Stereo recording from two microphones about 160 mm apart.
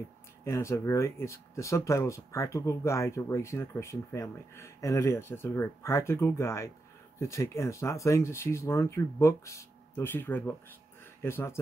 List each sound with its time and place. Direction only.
0.4 s speech: 20° left (ahead or behind)